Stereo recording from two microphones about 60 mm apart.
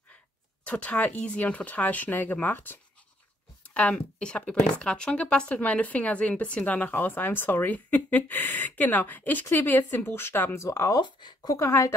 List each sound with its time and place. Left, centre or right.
0.7 s speech: left
3.6 s speech: left
10.5 s speech: left